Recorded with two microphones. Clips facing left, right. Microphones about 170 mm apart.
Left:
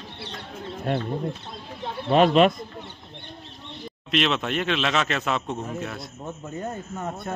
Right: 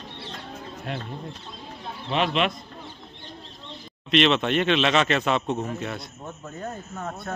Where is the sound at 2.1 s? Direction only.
45° left (ahead or behind).